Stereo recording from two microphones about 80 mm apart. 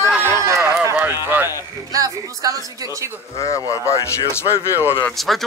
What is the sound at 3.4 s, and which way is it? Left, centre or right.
Speech, left.